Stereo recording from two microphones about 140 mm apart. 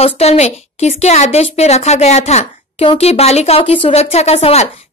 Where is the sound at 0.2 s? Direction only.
50° left (ahead or behind).